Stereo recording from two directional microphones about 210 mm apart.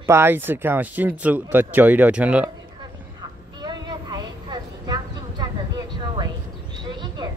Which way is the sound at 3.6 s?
20° right (ahead or behind).